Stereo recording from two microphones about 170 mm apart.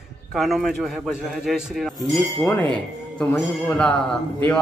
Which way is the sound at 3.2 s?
5° left (ahead or behind).